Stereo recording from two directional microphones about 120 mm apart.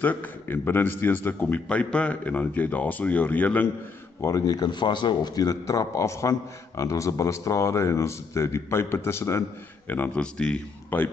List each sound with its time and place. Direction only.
0.0 s a man's voice: 15° left (ahead or behind)
4.2 s a man's voice: 30° left (ahead or behind); by 11.1 s 10° left (ahead or behind)